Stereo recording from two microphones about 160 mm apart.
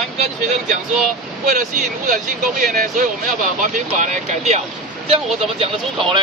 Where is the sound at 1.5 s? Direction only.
55° right (ahead or behind).